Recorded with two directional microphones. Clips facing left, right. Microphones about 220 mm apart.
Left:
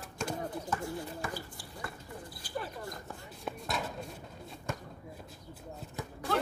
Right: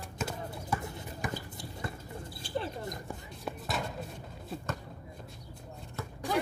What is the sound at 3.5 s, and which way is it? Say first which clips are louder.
Chopping: right 1 dB; centre (ahead or behind).